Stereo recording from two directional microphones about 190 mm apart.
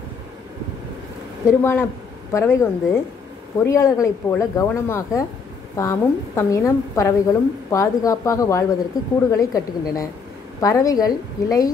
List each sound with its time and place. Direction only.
1.4 s a woman's voice: 15° left (ahead or behind)